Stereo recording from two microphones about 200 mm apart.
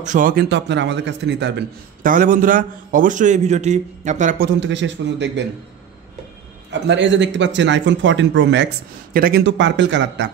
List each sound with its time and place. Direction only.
0.0 s speech: 40° right (ahead or behind); by 1.5 s 60° right (ahead or behind)
2.0 s a man's voice: 40° right (ahead or behind)
4.6 s speech: 65° right (ahead or behind)
6.7 s speech: 65° right (ahead or behind)
9.1 s speech: 50° right (ahead or behind); by 10.3 s 65° right (ahead or behind)